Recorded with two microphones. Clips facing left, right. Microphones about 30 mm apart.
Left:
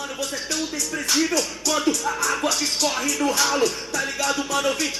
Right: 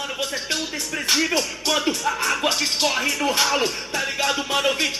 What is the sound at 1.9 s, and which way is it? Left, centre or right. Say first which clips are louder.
Music: even; right.